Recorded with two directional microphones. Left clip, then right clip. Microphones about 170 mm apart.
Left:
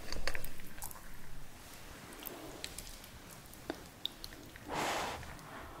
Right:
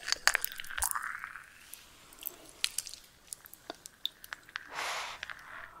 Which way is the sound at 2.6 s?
65° right (ahead or behind).